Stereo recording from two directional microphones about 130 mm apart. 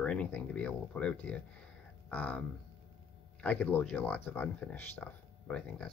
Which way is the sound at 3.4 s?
10° left (ahead or behind).